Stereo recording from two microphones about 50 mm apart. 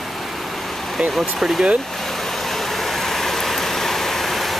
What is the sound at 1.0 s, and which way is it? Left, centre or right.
Speech, centre.